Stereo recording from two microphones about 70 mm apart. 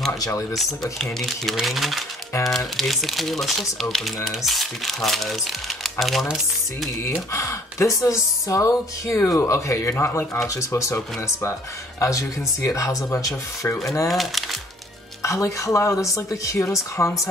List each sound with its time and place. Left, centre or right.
0.2 s speech: left
0.9 s speech: centre
7.3 s speech: left
10.5 s speech: left
12.0 s speech: left
14.0 s speech: centre
15.2 s speech: left